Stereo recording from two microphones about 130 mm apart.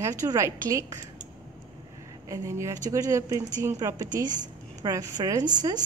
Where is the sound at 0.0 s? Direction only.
25° right (ahead or behind).